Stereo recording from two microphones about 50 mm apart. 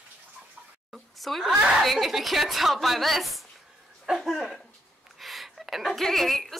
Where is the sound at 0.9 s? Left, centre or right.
Centre.